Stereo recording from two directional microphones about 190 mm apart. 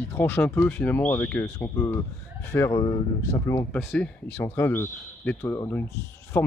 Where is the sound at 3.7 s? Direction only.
5° left (ahead or behind).